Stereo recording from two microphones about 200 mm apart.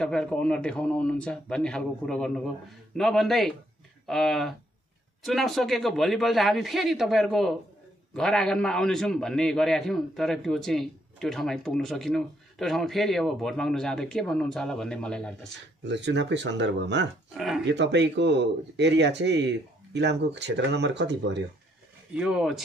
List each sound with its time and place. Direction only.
0.0 s a man's voice: 5° left (ahead or behind)
15.8 s speech: 60° right (ahead or behind)
17.4 s speech: centre (ahead or behind)
17.6 s speech: 60° right (ahead or behind)
22.1 s a man's voice: 5° right (ahead or behind)